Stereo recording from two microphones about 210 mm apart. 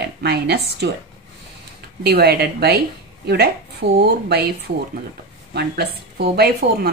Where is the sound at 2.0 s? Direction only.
50° right (ahead or behind).